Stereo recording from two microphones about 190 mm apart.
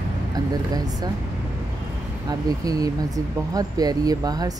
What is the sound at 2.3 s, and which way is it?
Speech, 20° right (ahead or behind).